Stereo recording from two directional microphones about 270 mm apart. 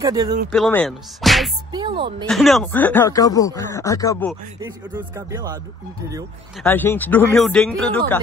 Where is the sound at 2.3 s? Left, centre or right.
Centre.